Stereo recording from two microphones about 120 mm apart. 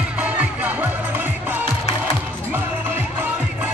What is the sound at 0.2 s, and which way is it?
Music, 10° right (ahead or behind).